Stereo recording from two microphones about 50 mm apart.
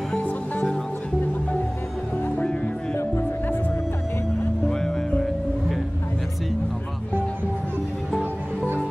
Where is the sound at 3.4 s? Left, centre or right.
Left.